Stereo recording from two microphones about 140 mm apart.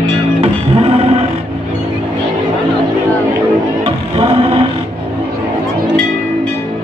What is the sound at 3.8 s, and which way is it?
Music, 45° right (ahead or behind).